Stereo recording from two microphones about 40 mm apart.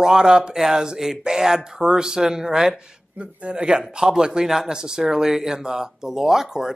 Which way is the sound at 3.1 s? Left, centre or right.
Right.